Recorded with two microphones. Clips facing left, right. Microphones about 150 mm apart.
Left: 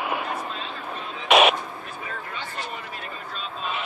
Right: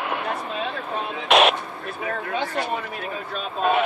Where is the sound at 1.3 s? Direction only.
Centre (ahead or behind).